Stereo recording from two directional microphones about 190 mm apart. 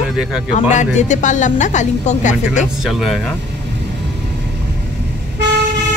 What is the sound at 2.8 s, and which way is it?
Speech, centre (ahead or behind).